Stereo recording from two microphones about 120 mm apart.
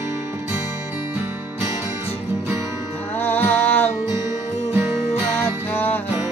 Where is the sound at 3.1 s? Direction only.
15° left (ahead or behind).